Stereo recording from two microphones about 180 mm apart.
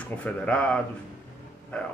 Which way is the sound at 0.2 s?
5° left (ahead or behind).